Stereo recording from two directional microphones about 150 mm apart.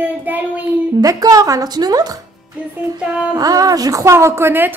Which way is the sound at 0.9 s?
25° right (ahead or behind).